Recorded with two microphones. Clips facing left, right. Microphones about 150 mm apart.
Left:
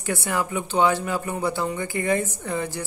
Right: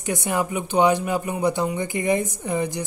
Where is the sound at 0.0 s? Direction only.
15° right (ahead or behind).